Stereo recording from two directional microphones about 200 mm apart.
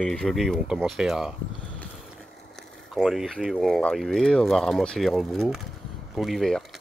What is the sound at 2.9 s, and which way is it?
Speech, centre (ahead or behind).